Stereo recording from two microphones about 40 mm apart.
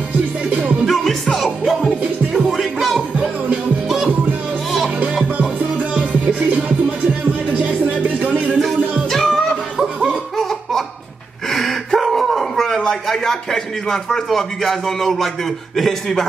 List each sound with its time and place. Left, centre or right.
0.5 s music: right
0.8 s music: centre
7.5 s music: right
8.9 s music: centre
11.5 s gasp: centre
15.7 s a man's voice: centre